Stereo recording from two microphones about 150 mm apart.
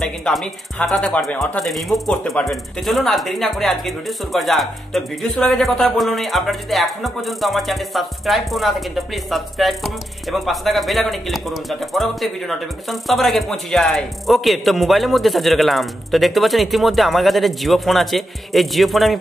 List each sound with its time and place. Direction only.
0.0 s speech: centre (ahead or behind)